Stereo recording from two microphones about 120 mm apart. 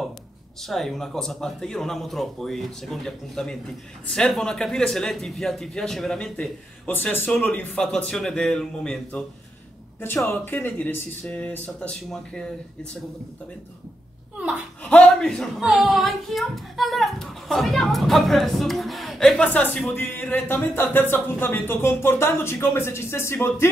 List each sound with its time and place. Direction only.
0.7 s a woman's voice: centre (ahead or behind)
6.9 s speech: 15° left (ahead or behind)
10.0 s speech: 20° left (ahead or behind)
14.9 s a woman's voice: 10° left (ahead or behind)